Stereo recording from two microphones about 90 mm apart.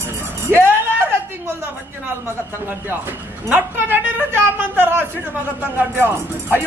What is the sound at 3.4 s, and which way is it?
Speech, 20° right (ahead or behind).